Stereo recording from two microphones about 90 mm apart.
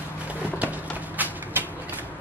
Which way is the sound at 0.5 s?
20° right (ahead or behind).